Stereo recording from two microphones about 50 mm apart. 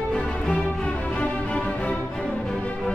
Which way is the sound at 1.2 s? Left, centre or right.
Left.